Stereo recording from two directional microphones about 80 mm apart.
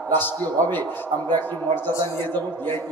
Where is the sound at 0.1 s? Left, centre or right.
Left.